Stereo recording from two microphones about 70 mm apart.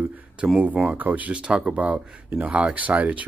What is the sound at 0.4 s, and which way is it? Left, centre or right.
Speech, centre.